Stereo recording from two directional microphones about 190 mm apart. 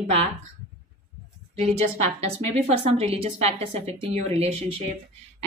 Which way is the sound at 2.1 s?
35° right (ahead or behind).